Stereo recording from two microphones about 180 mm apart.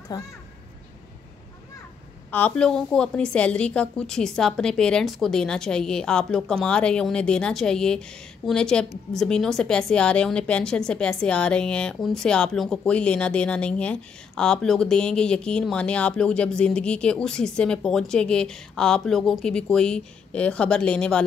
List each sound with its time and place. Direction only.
0.1 s a child's voice: 20° left (ahead or behind)
2.3 s a woman's voice: 5° left (ahead or behind)